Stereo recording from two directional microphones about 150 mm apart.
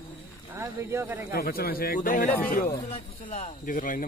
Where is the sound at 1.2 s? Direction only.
90° left.